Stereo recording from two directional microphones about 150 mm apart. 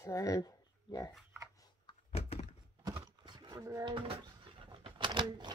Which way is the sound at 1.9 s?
40° left (ahead or behind).